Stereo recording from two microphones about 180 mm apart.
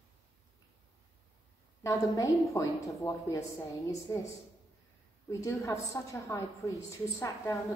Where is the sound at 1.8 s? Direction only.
15° left (ahead or behind).